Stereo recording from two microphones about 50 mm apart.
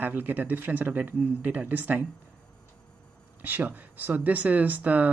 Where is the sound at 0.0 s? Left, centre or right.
Right.